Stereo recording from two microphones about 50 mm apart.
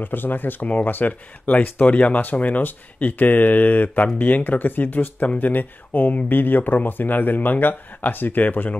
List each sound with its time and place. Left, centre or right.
0.0 s speech: left
0.7 s speech: left